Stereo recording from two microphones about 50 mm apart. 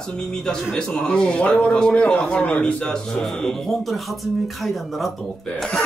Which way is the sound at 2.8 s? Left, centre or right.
Centre.